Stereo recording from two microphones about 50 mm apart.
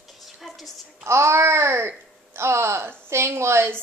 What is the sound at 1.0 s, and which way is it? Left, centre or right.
Speech, right.